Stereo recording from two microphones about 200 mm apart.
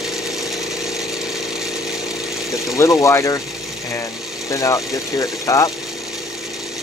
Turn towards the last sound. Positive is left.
turn(degrees=15)  # may be behind; listen again after turning